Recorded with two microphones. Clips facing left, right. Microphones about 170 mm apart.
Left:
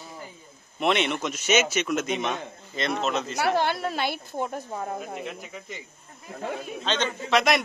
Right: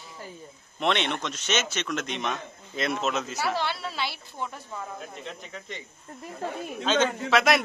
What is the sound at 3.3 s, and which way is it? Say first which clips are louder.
Speech: left 5 dB; 55° left (ahead or behind).